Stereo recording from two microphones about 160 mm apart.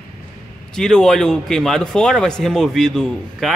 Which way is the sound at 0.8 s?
5° left (ahead or behind).